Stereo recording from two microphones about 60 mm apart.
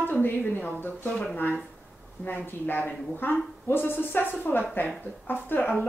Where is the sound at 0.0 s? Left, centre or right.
Left.